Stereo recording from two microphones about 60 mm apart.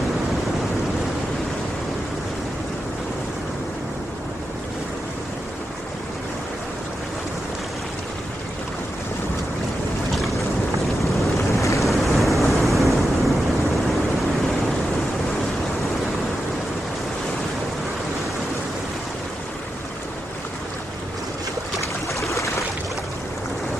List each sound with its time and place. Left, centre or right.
11.5 s boat: left
11.8 s waves: centre